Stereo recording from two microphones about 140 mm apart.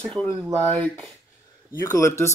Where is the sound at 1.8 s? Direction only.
20° left (ahead or behind).